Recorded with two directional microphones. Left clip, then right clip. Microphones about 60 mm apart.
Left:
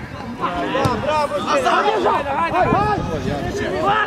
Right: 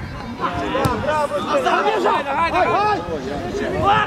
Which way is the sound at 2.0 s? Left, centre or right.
Right.